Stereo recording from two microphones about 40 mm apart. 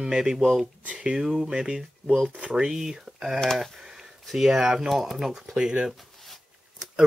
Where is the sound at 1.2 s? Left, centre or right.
Centre.